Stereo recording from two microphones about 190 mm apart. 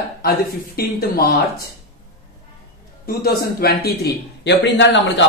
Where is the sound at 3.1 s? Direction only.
55° left (ahead or behind).